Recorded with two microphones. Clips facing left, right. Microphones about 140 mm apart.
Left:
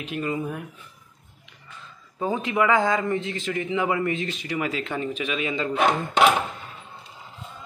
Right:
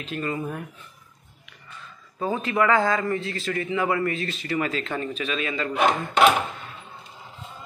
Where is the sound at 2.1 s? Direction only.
15° left (ahead or behind).